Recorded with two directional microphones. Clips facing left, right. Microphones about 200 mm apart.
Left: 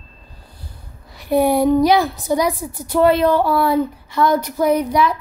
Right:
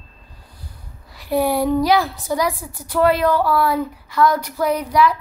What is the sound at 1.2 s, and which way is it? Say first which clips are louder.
A woman's voice: left 3 dB; 20° left (ahead or behind).